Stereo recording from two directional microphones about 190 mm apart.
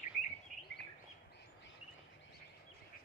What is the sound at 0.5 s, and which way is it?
Bird, 45° right (ahead or behind).